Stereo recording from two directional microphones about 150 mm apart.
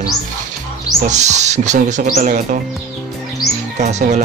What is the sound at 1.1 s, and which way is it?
Speech, 50° right (ahead or behind).